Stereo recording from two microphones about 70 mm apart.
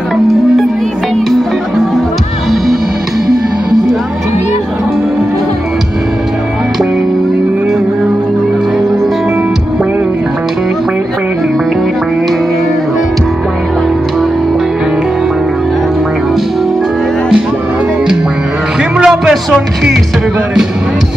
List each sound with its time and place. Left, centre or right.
18.9 s music: centre